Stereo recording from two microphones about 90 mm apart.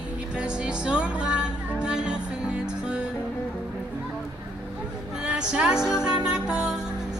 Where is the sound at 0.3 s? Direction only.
10° right (ahead or behind).